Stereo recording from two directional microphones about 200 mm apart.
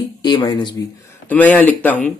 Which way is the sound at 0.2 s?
20° left (ahead or behind).